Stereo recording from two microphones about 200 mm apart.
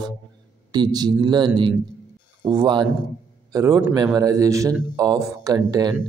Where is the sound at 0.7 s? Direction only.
20° right (ahead or behind).